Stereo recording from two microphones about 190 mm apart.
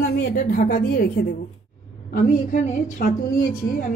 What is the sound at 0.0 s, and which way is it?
A woman's voice, 55° left (ahead or behind).